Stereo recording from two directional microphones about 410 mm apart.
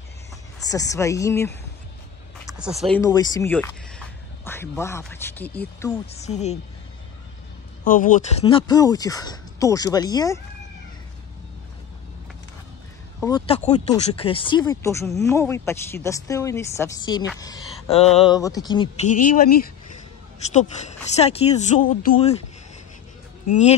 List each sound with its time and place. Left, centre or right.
0.7 s speech: centre
2.8 s speech: centre
7.8 s speech: centre
13.2 s speech: centre